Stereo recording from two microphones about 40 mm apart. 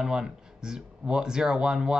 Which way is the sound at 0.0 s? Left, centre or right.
Centre.